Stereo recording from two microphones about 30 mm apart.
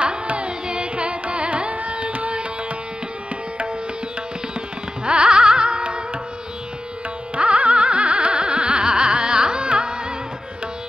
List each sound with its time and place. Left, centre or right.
0.5 s carnatic music: right
0.9 s carnatic music: right
5.0 s carnatic music: right
7.3 s carnatic music: right
9.7 s music: right